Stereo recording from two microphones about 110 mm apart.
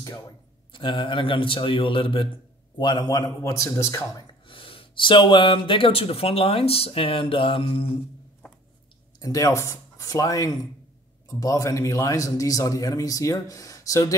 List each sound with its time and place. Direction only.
0.7 s speech: 50° left (ahead or behind)
2.8 s a man's voice: 40° left (ahead or behind); by 4.2 s 25° left (ahead or behind)
4.3 s speech: 50° left (ahead or behind)
9.2 s a man's voice: 30° left (ahead or behind)